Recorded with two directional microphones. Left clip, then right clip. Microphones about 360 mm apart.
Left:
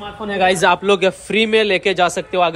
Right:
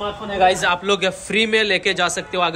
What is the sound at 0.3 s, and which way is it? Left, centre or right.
Speech, centre.